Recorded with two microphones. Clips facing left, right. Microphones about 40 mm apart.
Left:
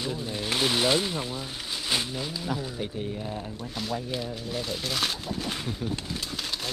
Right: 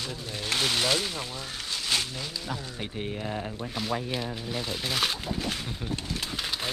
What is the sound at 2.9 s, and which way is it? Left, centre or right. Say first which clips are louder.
Speech: even; right.